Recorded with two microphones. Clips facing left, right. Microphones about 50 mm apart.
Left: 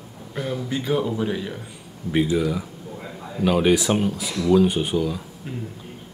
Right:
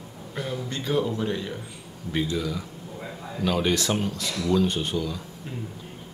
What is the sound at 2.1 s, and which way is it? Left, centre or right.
Speech, centre.